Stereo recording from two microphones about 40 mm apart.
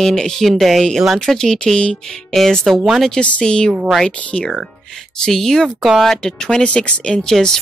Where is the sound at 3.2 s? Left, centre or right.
Left.